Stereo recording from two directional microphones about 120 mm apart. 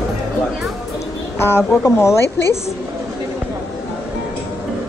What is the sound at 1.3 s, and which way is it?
A woman's voice, 20° left (ahead or behind).